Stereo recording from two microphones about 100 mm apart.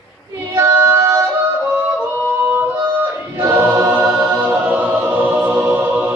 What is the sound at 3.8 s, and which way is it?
Choir, 20° right (ahead or behind).